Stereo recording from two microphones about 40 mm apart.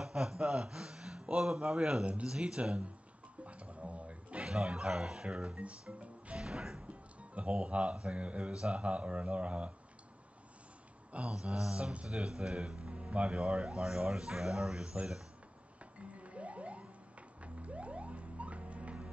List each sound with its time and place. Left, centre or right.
0.0 s a sound: centre
1.4 s a man's voice: centre
2.4 s speech: right
3.4 s a sound: right
4.5 s speech: centre
6.4 s speech: centre
7.2 s speech: right
11.1 s speech: right
11.3 s speech: centre
15.8 s music: right